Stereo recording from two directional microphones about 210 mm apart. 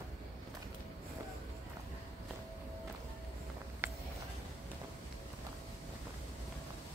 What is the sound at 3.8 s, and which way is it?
Walk, 10° right (ahead or behind).